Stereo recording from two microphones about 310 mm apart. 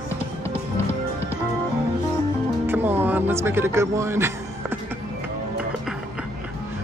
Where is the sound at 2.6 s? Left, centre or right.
Centre.